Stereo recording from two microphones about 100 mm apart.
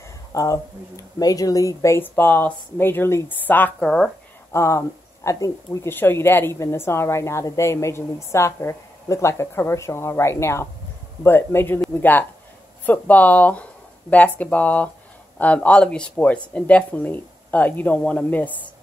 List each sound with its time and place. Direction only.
0.3 s speech: 35° left (ahead or behind); by 4.1 s 10° left (ahead or behind)
4.5 s speech: 30° left (ahead or behind)